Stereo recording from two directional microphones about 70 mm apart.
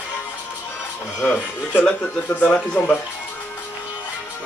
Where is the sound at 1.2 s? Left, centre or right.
Centre.